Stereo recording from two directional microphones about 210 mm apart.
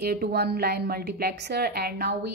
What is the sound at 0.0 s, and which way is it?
A woman's voice, 50° right (ahead or behind).